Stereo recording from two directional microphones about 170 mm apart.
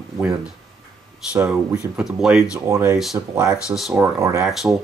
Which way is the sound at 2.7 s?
20° right (ahead or behind).